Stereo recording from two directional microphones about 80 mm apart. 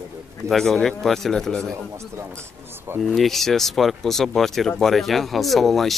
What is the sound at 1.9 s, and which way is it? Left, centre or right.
Speech, right.